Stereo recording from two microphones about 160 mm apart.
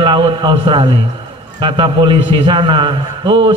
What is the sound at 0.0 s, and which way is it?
A man's voice, 30° right (ahead or behind).